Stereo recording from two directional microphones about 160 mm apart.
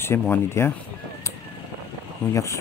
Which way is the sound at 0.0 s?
15° left (ahead or behind).